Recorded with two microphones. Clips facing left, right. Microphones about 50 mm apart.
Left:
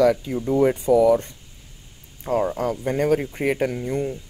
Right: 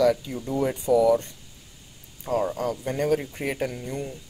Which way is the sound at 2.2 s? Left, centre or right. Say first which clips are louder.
Left 3 dB; left.